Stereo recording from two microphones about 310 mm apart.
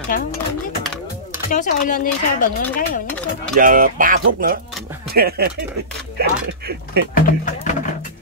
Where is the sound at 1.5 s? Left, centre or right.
Left.